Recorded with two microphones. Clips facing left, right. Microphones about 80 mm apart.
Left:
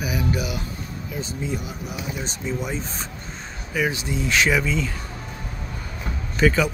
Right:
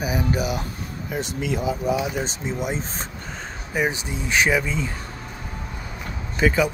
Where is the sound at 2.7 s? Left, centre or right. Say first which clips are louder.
Right 1 dB; right.